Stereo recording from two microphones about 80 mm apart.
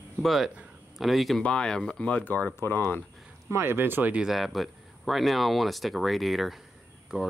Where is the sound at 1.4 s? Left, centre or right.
Centre.